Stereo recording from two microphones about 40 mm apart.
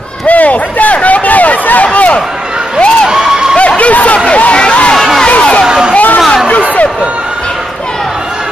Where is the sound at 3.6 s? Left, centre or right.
Left.